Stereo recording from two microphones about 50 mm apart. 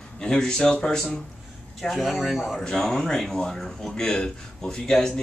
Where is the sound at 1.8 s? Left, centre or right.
Centre.